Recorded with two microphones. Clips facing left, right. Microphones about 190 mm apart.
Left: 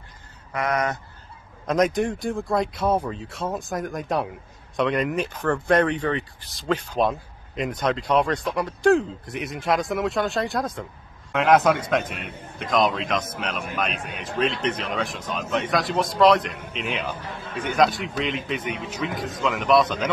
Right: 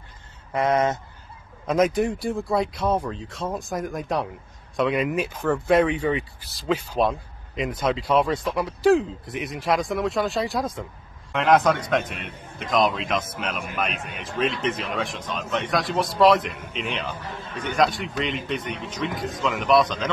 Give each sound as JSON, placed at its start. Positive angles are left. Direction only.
{"t": 0.5, "sound": "speech", "side_deg": -25}
{"t": 1.7, "sound": "speech", "side_deg": 0}